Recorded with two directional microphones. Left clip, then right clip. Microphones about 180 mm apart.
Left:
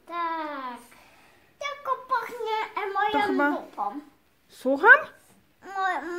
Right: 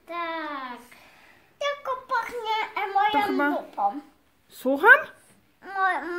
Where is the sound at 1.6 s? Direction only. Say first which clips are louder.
Right 2 dB; 55° right (ahead or behind).